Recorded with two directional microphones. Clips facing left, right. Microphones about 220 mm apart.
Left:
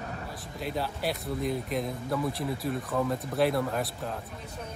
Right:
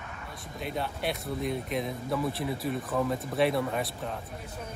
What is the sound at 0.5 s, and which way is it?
Speech, centre (ahead or behind).